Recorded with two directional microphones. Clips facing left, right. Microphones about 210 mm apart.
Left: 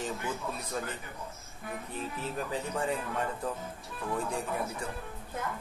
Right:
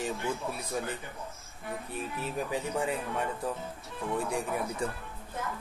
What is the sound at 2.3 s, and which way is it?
Speech, 10° right (ahead or behind).